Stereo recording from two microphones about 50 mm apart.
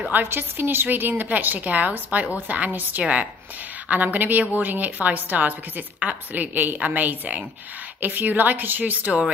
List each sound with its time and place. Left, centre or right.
0.1 s a woman's voice: right
3.0 s a woman's voice: right